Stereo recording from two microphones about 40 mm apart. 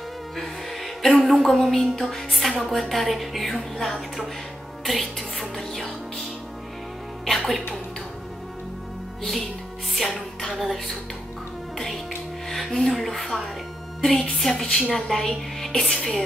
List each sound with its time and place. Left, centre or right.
0.4 s music: centre
1.2 s a woman's voice: centre
7.2 s a woman's voice: centre
9.9 s music: centre
12.4 s a woman's voice: centre
14.6 s a woman's voice: centre
14.9 s a woman's voice: centre